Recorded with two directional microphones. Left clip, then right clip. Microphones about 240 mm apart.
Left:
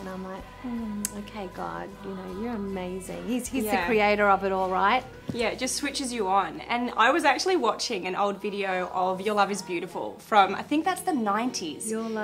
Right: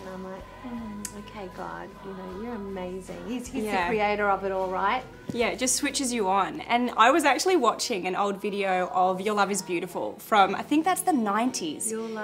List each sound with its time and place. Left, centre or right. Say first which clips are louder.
2.4 s a woman's voice: left 2 dB; left
3.6 s a woman's voice: right 1 dB; centre
3.9 s a woman's voice: left 5 dB; left
5.3 s a woman's voice: right 2 dB; centre